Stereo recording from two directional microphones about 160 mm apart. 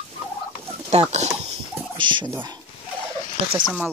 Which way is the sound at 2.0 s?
30° right (ahead or behind).